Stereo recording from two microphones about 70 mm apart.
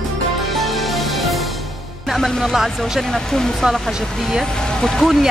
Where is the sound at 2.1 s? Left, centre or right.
Centre.